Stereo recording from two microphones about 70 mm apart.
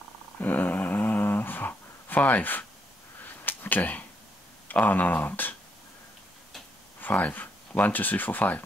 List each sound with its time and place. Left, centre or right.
0.4 s a sound: left
4.6 s speech: left
7.0 s speech: left